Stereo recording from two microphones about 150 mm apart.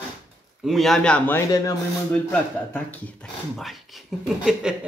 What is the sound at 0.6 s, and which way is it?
Speech, centre (ahead or behind).